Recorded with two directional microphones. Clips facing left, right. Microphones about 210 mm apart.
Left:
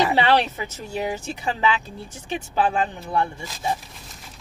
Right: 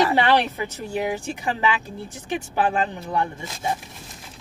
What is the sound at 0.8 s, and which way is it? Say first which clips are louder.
Speech: right 1 dB; 15° right (ahead or behind).